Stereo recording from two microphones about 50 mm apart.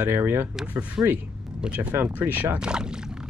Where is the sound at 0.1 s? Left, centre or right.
Right.